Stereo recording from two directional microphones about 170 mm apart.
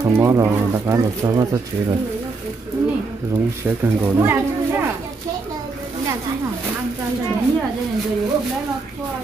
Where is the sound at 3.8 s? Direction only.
15° right (ahead or behind).